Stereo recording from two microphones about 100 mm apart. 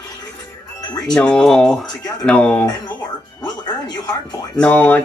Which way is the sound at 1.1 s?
10° left (ahead or behind).